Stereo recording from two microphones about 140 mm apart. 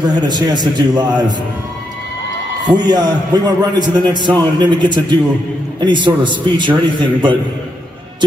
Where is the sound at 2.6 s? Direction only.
30° right (ahead or behind).